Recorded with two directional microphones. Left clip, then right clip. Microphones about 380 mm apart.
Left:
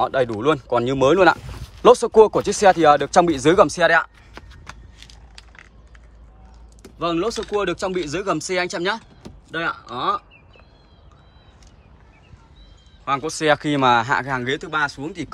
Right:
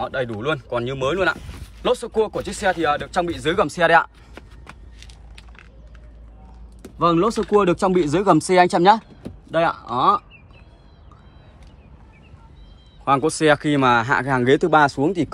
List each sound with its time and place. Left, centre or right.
0.0 s speech: centre
6.8 s typing: centre
7.6 s speech: centre
13.0 s speech: centre